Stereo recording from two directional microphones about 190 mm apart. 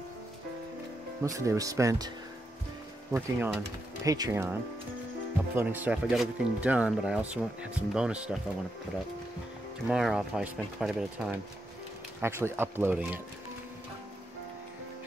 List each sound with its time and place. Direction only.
1.2 s speech: 15° right (ahead or behind)
5.6 s speech: 10° right (ahead or behind)
9.8 s speech: 5° right (ahead or behind)